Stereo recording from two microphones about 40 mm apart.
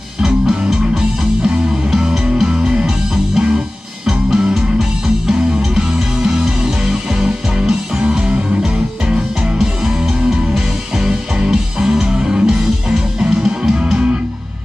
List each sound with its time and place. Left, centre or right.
0.7 s music: centre
4.6 s music: centre
5.3 s music: right
9.6 s music: centre